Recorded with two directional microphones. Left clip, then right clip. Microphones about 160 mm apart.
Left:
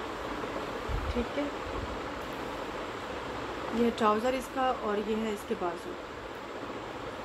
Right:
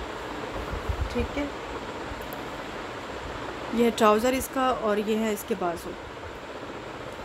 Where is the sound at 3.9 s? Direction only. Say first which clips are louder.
Right 7 dB; 70° right (ahead or behind).